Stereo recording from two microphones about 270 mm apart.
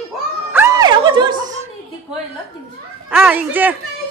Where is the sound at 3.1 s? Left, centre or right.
Centre.